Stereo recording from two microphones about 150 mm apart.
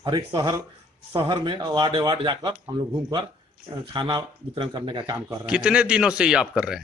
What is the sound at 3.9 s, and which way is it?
Speech, 30° right (ahead or behind).